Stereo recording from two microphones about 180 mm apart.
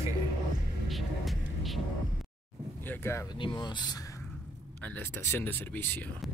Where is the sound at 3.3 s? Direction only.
25° left (ahead or behind).